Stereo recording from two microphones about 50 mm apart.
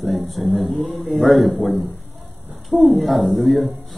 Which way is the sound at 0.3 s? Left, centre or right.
Centre.